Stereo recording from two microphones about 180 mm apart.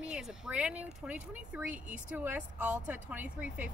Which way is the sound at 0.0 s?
5° right (ahead or behind).